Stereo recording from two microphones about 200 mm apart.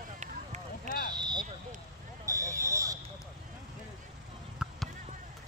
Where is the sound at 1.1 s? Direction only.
20° right (ahead or behind).